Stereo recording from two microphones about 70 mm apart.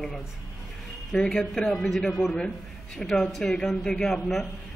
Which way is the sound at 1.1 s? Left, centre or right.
Centre.